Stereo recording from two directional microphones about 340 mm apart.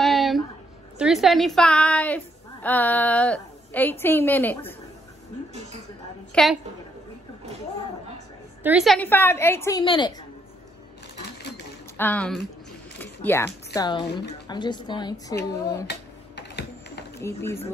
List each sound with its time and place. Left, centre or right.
0.0 s a sound: centre
0.9 s a woman's voice: centre
6.3 s a woman's voice: centre
8.6 s a woman's voice: centre
12.0 s a woman's voice: centre
13.0 s a sound: centre
13.7 s a woman's voice: centre
15.9 s typing: left
17.2 s a woman's voice: centre